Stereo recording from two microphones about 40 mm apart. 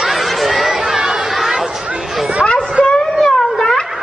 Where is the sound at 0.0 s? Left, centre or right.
Centre.